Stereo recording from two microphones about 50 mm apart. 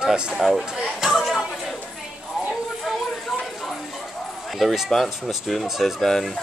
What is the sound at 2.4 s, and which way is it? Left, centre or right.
Clip-clop, centre.